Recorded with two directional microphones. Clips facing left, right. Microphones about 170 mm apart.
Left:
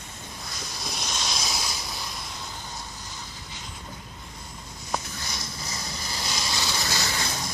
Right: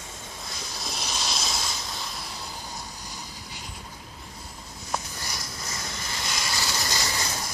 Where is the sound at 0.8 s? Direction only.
Centre (ahead or behind).